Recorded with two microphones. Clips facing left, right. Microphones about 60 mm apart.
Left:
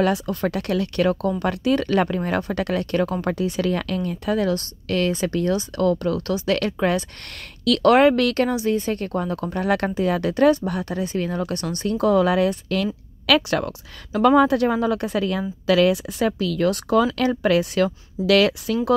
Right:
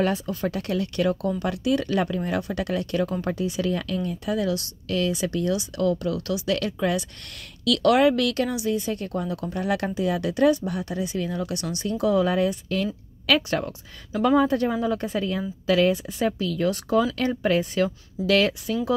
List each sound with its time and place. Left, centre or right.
0.0 s speech: left
5.1 s speech: left
7.6 s speech: left